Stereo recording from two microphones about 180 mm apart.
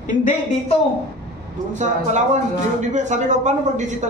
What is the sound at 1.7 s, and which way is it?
A man's voice, 40° right (ahead or behind).